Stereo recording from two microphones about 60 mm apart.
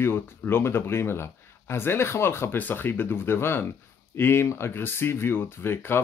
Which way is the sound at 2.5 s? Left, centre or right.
Left.